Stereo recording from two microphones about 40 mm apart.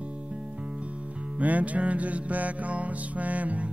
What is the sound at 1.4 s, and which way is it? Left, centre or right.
Music, right.